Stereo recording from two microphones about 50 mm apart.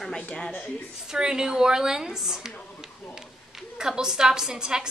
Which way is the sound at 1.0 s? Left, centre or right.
Centre.